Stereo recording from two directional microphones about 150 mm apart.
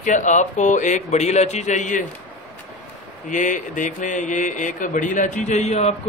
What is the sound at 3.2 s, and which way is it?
Speech, 60° left (ahead or behind).